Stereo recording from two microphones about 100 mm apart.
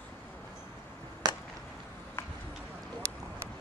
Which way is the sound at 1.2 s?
40° right (ahead or behind).